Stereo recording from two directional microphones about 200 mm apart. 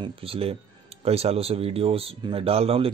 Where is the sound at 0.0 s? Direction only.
30° right (ahead or behind).